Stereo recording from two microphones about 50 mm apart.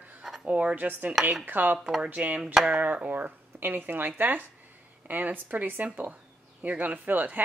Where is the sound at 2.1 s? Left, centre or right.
Right.